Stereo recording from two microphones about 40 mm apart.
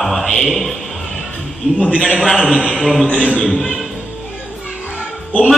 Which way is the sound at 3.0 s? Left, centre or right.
Left.